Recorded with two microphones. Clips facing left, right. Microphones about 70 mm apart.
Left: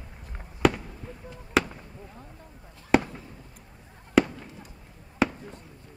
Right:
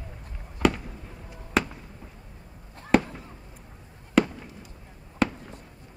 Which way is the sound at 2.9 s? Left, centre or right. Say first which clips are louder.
Even; centre.